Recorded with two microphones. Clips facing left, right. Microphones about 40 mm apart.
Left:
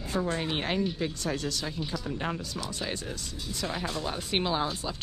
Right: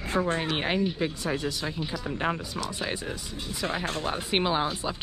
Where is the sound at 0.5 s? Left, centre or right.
Centre.